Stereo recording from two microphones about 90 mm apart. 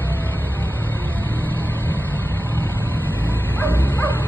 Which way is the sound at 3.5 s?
20° left (ahead or behind).